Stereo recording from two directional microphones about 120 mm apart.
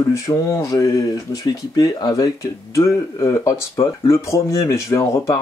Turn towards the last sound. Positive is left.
turn(degrees=25)  # may be behind; listen again after turning